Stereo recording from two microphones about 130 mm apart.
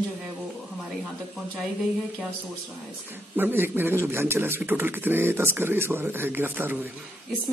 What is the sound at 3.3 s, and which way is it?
A man's voice, 15° right (ahead or behind).